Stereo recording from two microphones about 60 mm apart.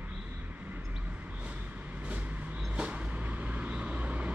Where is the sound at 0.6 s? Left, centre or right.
Right.